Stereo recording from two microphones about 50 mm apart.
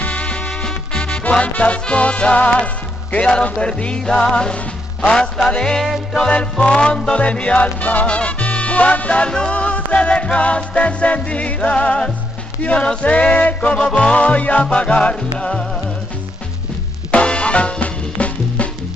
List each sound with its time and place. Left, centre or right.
0.0 s music: left
1.4 s music: left
17.1 s music: left